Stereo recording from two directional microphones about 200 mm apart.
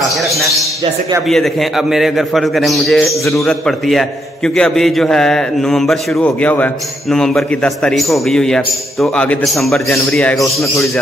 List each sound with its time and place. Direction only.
0.0 s a man's voice: centre (ahead or behind)